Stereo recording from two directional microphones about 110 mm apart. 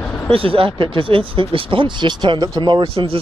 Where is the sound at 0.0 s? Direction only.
15° left (ahead or behind).